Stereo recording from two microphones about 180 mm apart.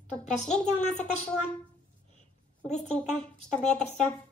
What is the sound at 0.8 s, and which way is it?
Speech, 40° left (ahead or behind).